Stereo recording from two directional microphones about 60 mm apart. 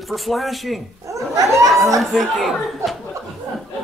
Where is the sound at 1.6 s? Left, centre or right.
Centre.